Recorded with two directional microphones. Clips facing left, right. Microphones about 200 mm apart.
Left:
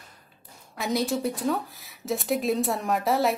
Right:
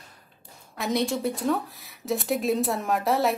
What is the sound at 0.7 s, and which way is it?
Speech, centre (ahead or behind).